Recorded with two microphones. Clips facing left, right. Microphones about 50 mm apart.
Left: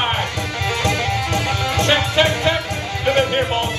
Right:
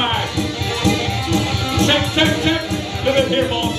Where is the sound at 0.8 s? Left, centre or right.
Left.